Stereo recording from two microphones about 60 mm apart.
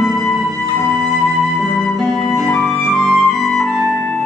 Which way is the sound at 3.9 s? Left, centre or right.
Left.